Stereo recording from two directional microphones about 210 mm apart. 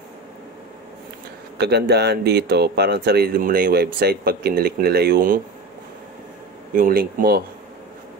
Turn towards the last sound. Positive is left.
turn(degrees=-45)  # may be behind; listen again after turning